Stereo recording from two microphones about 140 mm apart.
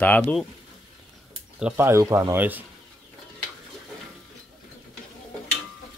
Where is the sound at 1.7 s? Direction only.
20° right (ahead or behind).